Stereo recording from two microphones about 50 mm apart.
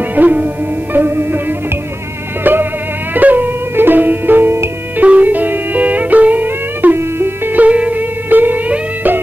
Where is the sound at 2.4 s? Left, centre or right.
Right.